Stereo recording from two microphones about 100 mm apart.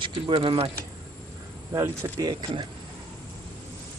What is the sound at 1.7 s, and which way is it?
Speech, 30° right (ahead or behind).